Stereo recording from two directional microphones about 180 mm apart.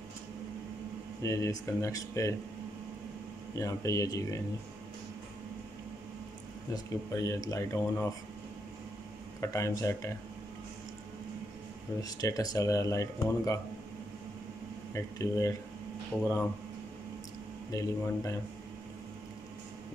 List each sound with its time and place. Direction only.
1.2 s speech: 15° left (ahead or behind)
3.5 s speech: 20° left (ahead or behind)
6.7 s speech: 20° left (ahead or behind)
9.4 s speech: 15° left (ahead or behind)
12.0 s speech: 20° left (ahead or behind)
15.0 s speech: 20° left (ahead or behind)
17.6 s speech: 20° left (ahead or behind)